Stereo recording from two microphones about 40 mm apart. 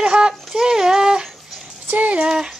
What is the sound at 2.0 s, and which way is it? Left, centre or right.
Speech, right.